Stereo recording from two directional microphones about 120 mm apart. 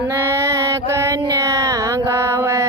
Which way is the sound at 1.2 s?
40° right (ahead or behind).